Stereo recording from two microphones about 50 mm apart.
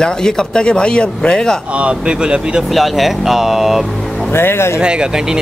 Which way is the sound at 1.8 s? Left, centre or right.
Right.